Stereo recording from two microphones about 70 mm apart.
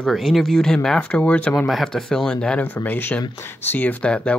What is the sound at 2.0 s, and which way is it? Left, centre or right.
Speech, centre.